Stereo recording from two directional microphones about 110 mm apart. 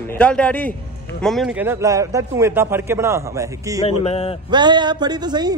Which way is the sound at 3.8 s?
65° left (ahead or behind).